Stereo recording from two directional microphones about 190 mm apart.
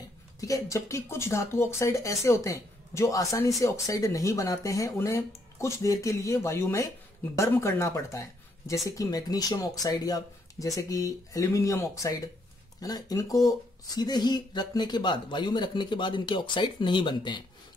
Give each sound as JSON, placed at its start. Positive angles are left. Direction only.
{"t": 0.4, "sound": "speech", "side_deg": 15}